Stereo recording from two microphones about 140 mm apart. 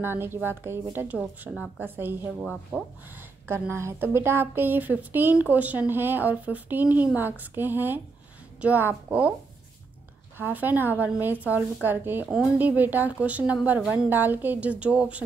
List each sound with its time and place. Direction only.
0.0 s a woman's voice: 15° right (ahead or behind)
10.3 s a woman's voice: 15° right (ahead or behind)